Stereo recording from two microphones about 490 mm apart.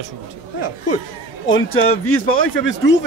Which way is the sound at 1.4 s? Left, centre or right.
Left.